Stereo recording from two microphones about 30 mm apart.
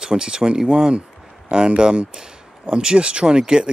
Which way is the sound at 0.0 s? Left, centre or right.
Right.